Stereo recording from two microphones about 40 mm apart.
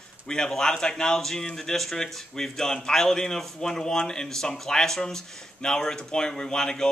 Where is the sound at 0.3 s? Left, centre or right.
Centre.